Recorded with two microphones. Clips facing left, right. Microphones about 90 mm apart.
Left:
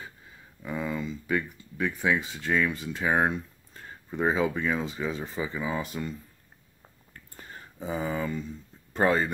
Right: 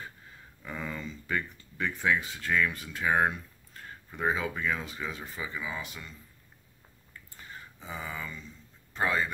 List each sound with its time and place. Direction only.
0.6 s speech: 10° left (ahead or behind); by 6.1 s 40° left (ahead or behind)
7.2 s a sound: 40° left (ahead or behind)
8.9 s speech: 40° left (ahead or behind)